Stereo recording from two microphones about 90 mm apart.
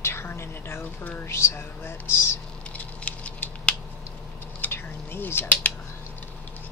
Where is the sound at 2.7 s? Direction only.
15° left (ahead or behind).